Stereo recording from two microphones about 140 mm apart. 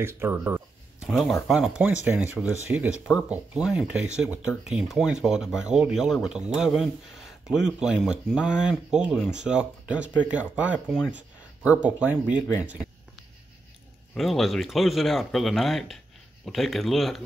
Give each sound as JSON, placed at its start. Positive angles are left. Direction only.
{"t": 0.0, "sound": "speech", "side_deg": -15}
{"t": 1.0, "sound": "speech", "side_deg": 0}
{"t": 14.1, "sound": "speech", "side_deg": 0}